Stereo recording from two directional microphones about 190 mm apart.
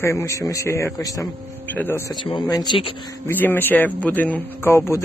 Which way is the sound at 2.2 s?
25° left (ahead or behind).